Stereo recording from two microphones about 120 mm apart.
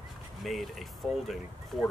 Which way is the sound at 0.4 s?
Centre (ahead or behind).